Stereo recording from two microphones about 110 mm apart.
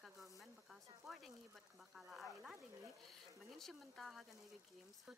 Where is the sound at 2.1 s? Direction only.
Centre (ahead or behind).